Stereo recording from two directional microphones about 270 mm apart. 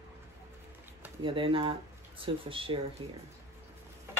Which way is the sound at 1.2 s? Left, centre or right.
Centre.